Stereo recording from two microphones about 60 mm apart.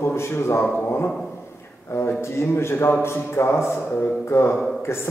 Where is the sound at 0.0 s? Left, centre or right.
Left.